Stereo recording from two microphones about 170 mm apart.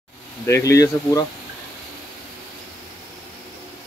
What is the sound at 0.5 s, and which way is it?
Speech, 15° left (ahead or behind).